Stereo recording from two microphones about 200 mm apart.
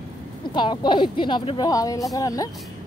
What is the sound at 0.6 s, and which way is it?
A woman's voice, 25° left (ahead or behind).